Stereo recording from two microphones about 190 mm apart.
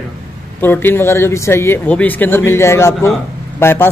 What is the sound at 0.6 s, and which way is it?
Speech, 10° left (ahead or behind).